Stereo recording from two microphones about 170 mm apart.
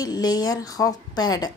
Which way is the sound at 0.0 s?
25° left (ahead or behind).